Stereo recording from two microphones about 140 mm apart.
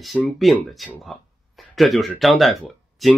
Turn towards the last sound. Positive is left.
turn(degrees=0)  # may be behind; listen again after turning